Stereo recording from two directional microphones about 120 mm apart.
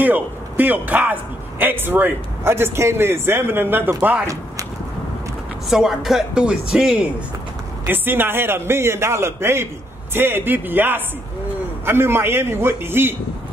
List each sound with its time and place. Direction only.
0.0 s a man's voice: 15° right (ahead or behind)
5.7 s a man's voice: 5° right (ahead or behind); by 13.1 s 20° right (ahead or behind)